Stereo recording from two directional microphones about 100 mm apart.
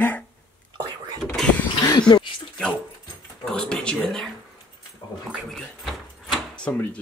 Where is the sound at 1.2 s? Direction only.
5° left (ahead or behind).